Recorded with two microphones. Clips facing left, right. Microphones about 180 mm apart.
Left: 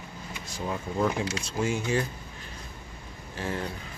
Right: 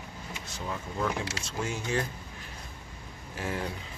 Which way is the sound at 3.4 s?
10° right (ahead or behind).